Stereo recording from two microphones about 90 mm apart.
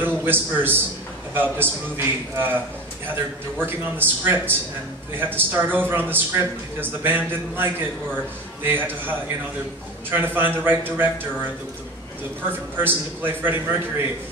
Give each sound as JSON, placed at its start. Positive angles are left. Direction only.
{"t": 0.0, "sound": "a man's voice", "side_deg": -20}
{"t": 3.5, "sound": "a man's voice", "side_deg": -20}
{"t": 12.4, "sound": "a man's voice", "side_deg": -25}